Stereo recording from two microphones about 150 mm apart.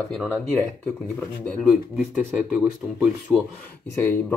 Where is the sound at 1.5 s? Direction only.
10° left (ahead or behind).